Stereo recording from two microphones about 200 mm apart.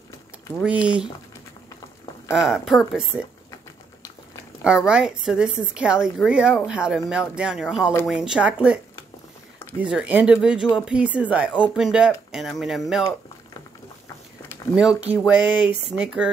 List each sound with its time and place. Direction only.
0.7 s a woman's voice: 5° right (ahead or behind)
2.4 s a woman's voice: centre (ahead or behind)
4.6 s a woman's voice: 5° right (ahead or behind)
14.8 s speech: 5° right (ahead or behind)